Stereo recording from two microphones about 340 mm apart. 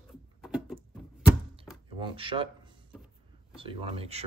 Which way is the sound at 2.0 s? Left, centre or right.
Centre.